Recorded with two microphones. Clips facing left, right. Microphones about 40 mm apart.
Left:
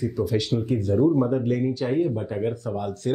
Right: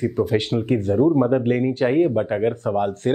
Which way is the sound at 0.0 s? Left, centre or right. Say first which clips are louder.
Right 4 dB; right.